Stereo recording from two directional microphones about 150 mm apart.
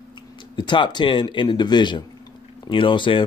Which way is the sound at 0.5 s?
30° left (ahead or behind).